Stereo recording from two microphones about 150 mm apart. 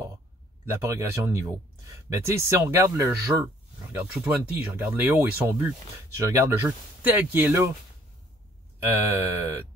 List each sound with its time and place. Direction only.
0.8 s speech: 20° right (ahead or behind)
8.7 s speech: 15° right (ahead or behind)